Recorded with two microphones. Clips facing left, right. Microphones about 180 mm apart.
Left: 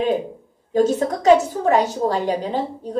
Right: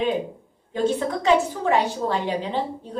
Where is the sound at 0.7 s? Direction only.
40° left (ahead or behind).